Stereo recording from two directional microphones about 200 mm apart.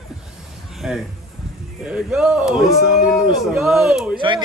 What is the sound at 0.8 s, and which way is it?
Music, centre (ahead or behind).